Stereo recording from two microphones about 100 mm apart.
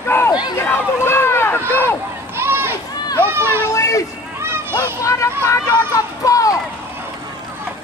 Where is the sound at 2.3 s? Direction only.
25° right (ahead or behind).